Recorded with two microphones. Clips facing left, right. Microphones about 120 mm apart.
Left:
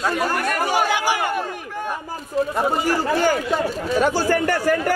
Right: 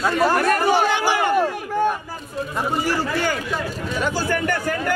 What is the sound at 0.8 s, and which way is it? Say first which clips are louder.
Speech: right 1 dB; 10° left (ahead or behind).